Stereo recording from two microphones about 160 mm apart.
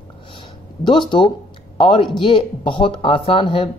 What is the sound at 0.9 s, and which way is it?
Speech, 30° left (ahead or behind).